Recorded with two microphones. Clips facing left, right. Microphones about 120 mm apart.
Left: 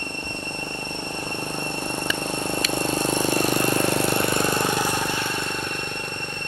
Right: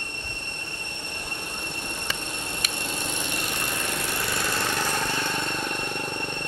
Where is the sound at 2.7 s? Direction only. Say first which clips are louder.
Left 11 dB; 40° left (ahead or behind).